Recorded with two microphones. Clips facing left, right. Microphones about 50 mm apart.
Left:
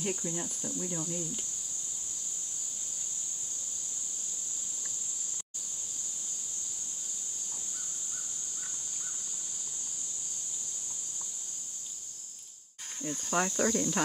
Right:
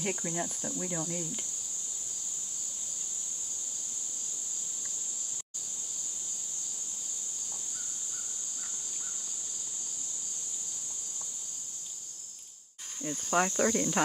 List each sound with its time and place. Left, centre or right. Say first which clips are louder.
0.0 s cricket: right 1 dB; right
13.0 s cricket: right 2 dB; centre